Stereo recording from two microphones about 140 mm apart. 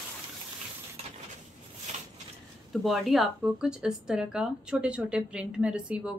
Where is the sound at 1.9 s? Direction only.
55° right (ahead or behind).